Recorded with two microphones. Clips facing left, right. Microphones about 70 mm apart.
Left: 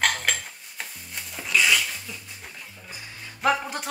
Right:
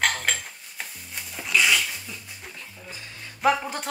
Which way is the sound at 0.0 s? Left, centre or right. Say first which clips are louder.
Even; centre.